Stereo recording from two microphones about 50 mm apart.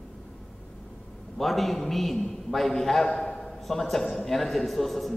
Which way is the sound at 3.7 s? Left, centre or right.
Centre.